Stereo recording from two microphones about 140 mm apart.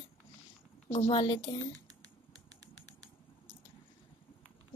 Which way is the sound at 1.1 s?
30° left (ahead or behind).